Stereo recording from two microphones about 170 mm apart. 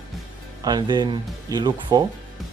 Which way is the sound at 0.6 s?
25° right (ahead or behind).